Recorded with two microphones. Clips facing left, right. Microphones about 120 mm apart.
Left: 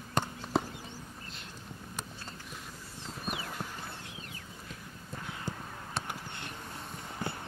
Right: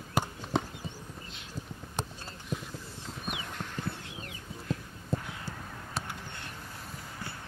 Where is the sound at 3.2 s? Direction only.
5° left (ahead or behind).